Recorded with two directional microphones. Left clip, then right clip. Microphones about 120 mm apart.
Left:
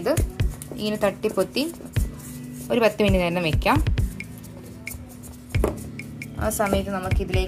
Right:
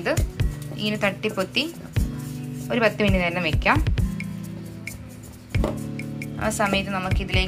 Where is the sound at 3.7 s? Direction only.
Centre (ahead or behind).